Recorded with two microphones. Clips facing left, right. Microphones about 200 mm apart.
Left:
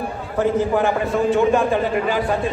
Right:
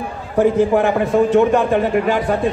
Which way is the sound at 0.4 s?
65° right (ahead or behind).